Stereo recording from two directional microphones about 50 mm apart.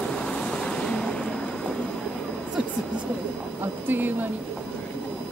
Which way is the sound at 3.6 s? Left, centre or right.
Right.